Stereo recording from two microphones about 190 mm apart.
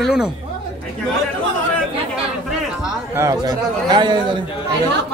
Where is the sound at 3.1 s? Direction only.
15° right (ahead or behind).